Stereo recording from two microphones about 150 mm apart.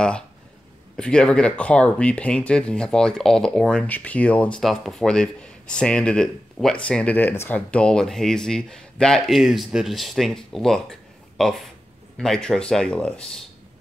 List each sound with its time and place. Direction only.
0.9 s speech: 5° left (ahead or behind)